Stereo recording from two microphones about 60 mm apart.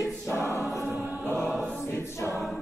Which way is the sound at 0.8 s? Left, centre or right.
Right.